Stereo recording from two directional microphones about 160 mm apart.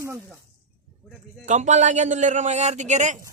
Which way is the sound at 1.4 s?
45° right (ahead or behind).